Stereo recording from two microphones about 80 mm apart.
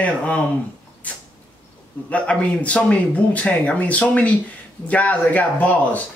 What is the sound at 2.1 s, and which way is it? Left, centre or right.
Speech, centre.